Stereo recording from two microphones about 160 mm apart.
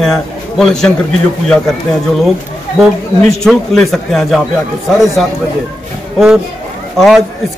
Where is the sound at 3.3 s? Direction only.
Centre (ahead or behind).